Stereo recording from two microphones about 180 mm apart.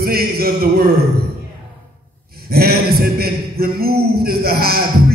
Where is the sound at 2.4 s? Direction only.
55° right (ahead or behind).